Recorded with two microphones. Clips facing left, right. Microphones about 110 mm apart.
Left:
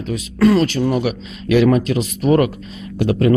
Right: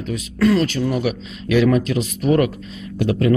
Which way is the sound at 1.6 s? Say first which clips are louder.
Left 2 dB; 35° left (ahead or behind).